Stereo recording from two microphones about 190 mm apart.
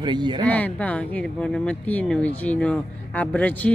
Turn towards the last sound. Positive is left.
turn(degrees=10)  # may be behind; listen again after turning